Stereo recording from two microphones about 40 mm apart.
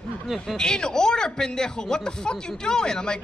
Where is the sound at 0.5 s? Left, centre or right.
Centre.